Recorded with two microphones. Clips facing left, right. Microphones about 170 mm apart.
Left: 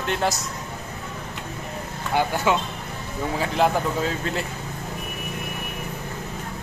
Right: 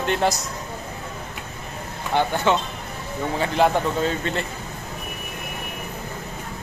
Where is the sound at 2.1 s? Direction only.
10° left (ahead or behind).